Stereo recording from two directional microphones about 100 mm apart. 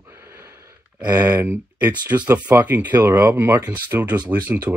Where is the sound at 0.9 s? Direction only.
15° right (ahead or behind).